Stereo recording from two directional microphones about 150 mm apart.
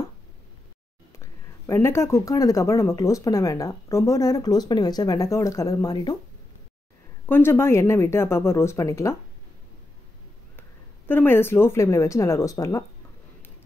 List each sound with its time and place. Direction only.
1.2 s speech: 20° left (ahead or behind)
7.2 s speech: 15° left (ahead or behind)
11.1 s speech: 15° left (ahead or behind)